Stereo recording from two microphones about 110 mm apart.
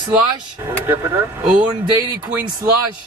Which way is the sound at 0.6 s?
20° right (ahead or behind).